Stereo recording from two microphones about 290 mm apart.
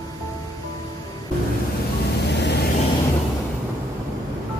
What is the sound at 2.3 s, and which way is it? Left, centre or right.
Vehicle, left.